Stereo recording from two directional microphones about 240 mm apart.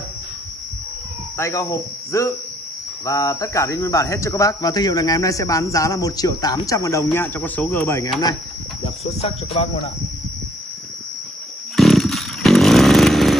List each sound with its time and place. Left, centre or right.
1.4 s speech: centre
9.2 s speech: left
11.7 s chainsaw: centre